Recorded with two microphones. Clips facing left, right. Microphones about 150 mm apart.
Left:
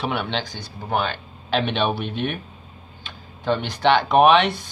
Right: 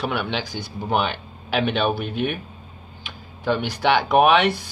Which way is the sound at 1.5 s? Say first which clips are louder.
Right 1 dB; 5° right (ahead or behind).